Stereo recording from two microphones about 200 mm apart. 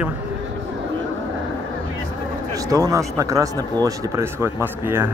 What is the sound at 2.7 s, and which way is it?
Speech, 15° right (ahead or behind).